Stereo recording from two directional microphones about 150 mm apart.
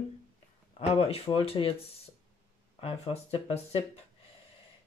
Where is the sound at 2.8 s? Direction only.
40° left (ahead or behind).